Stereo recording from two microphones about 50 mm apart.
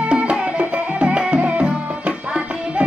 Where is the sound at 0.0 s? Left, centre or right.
Right.